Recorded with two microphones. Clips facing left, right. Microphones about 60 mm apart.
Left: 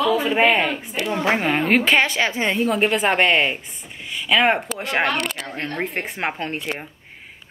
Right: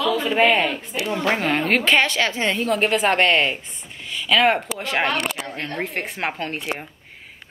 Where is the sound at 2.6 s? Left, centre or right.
Centre.